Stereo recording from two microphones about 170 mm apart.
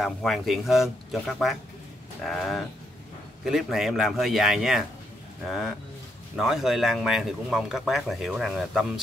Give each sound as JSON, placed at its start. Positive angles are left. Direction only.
{"t": 0.0, "sound": "a man's voice", "side_deg": 0}